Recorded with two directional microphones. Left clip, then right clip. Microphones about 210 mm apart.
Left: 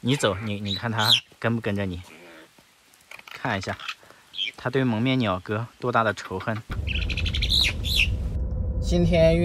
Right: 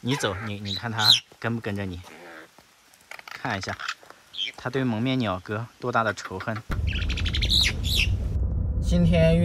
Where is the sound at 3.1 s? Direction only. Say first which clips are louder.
Left 2 dB; centre (ahead or behind).